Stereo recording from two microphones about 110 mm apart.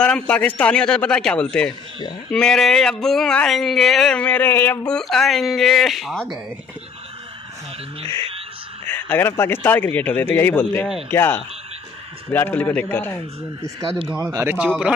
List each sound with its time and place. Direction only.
0.0 s a man's voice: 10° left (ahead or behind)
4.9 s speech: 5° left (ahead or behind)
8.8 s a man's voice: 20° left (ahead or behind)
14.0 s speech: 10° right (ahead or behind)